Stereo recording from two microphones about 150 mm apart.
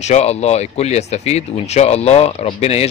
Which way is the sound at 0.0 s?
45° left (ahead or behind).